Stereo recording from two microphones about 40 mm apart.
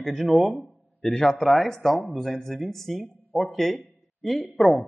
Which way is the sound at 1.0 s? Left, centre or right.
Left.